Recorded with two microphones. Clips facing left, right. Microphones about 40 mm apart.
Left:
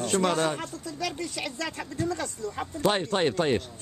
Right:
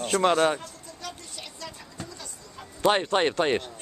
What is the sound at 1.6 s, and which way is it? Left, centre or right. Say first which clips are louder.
Speech: left 11 dB; left.